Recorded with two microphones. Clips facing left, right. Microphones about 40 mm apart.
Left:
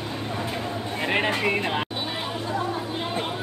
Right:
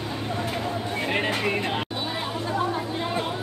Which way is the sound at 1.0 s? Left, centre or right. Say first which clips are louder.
Left 3 dB; centre.